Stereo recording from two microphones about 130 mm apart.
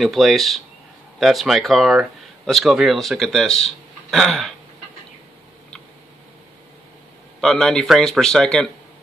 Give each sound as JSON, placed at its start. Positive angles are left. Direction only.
{"t": 0.0, "sound": "speech", "side_deg": 0}
{"t": 7.3, "sound": "speech", "side_deg": 5}